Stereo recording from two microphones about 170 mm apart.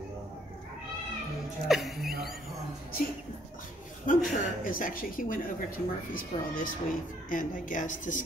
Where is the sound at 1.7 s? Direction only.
Centre (ahead or behind).